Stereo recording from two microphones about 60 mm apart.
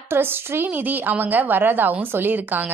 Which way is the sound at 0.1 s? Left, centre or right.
Right.